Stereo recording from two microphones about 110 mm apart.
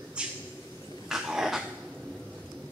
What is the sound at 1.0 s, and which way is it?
Cough, 5° right (ahead or behind).